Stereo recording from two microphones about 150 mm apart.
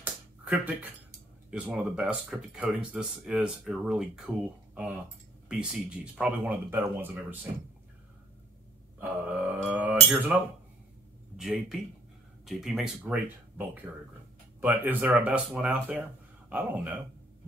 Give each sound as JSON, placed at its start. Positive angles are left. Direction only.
{"t": 0.0, "sound": "a sound", "side_deg": -10}
{"t": 1.5, "sound": "speech", "side_deg": -5}
{"t": 5.5, "sound": "speech", "side_deg": -5}
{"t": 9.0, "sound": "speech", "side_deg": -10}
{"t": 11.3, "sound": "speech", "side_deg": -5}